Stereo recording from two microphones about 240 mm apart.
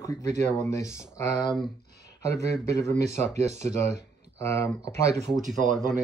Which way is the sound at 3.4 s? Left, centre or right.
Right.